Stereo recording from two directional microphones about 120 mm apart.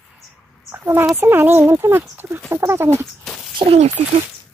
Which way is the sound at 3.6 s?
60° right (ahead or behind).